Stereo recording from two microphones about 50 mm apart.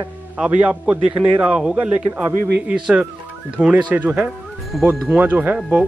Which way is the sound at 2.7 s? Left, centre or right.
Right.